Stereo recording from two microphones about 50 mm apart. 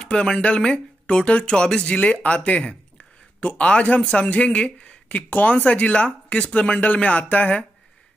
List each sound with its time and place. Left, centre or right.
0.0 s speech: centre